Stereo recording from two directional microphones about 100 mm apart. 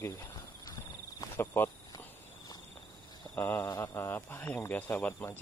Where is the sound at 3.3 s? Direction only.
20° left (ahead or behind).